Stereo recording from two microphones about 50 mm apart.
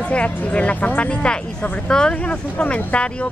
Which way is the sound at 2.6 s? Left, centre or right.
Left.